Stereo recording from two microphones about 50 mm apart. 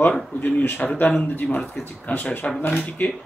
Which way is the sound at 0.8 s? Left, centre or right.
Centre.